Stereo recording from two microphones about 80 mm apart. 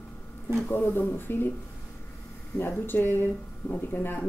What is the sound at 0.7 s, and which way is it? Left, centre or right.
Speech, left.